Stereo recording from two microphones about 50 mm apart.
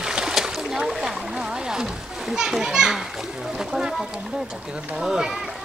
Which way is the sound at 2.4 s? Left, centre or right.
Centre.